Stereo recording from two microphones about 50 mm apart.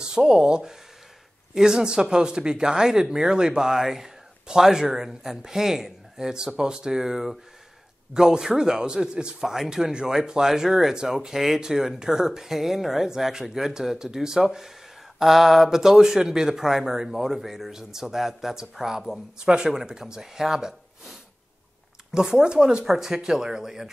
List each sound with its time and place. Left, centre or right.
0.0 s speech: centre